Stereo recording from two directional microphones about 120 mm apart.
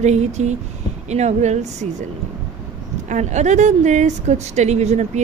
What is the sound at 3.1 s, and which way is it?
A woman's voice, 75° right (ahead or behind).